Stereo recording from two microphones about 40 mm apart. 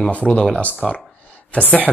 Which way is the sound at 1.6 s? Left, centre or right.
Left.